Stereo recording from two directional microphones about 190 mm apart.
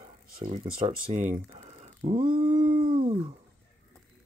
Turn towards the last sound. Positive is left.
turn(degrees=-30)  # may be behind; listen again after turning